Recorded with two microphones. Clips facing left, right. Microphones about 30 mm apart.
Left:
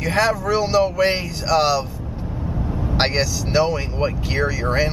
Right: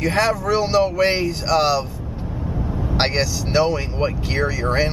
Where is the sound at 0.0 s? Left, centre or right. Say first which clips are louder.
Even; centre.